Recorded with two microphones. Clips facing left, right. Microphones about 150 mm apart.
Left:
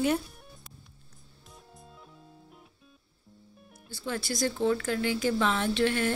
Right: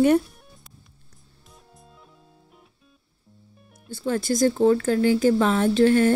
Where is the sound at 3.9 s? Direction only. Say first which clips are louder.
Right 9 dB; 45° right (ahead or behind).